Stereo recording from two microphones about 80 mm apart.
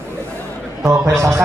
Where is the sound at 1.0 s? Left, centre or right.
Right.